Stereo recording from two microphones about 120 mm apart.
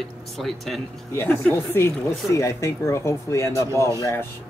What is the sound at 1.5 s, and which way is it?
Speech, 20° left (ahead or behind).